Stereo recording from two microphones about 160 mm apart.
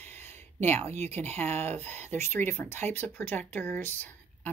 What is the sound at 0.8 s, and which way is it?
Speech, 45° right (ahead or behind).